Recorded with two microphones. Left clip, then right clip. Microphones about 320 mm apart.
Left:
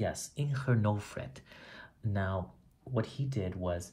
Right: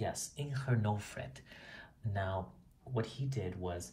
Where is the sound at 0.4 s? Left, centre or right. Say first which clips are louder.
Left 5 dB; centre.